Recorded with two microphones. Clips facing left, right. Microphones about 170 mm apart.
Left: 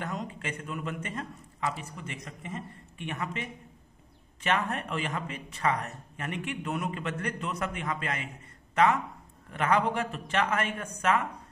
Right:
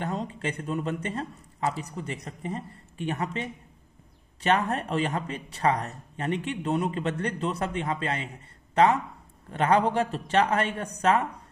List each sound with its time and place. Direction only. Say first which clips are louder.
0.0 s speech: right 5 dB; 30° right (ahead or behind)